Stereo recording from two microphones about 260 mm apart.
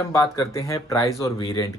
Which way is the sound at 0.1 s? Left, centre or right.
Centre.